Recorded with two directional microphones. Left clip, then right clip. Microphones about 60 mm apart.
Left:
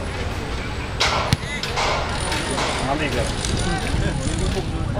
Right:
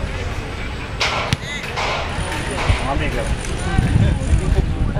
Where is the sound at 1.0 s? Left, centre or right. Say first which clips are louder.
Even; centre.